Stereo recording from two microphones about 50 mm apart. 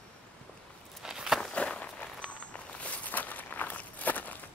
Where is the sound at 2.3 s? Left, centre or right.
Left.